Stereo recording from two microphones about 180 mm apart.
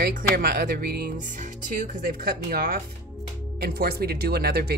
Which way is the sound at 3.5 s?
55° right (ahead or behind).